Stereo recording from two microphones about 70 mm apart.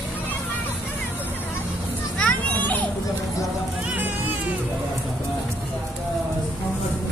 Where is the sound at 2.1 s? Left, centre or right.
Centre.